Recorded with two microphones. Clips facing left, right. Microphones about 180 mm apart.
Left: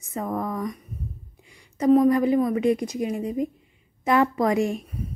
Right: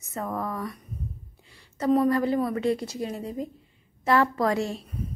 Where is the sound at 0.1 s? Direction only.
15° left (ahead or behind).